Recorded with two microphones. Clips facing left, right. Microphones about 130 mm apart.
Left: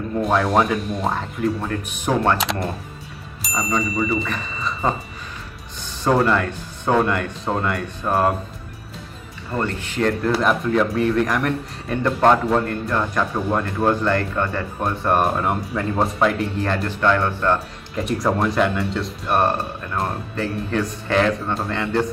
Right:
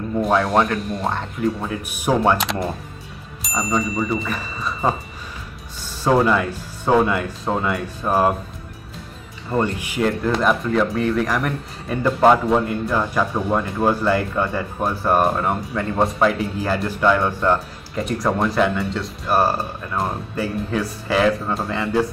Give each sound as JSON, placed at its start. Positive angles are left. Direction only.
{"t": 0.1, "sound": "speech", "side_deg": 0}
{"t": 2.3, "sound": "speech", "side_deg": 0}
{"t": 9.5, "sound": "speech", "side_deg": -15}
{"t": 17.9, "sound": "speech", "side_deg": 0}